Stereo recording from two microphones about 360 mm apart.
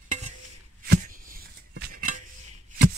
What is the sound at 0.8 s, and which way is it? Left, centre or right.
Chopping, right.